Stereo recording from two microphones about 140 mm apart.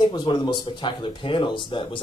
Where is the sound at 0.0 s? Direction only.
30° left (ahead or behind).